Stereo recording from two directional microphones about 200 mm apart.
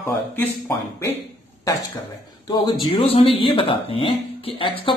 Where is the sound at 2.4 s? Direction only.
20° left (ahead or behind).